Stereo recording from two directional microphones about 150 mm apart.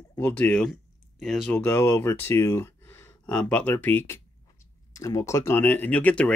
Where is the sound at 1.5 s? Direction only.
15° left (ahead or behind).